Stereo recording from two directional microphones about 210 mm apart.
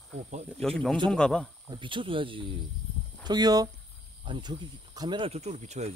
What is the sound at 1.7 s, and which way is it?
Speech, 25° right (ahead or behind).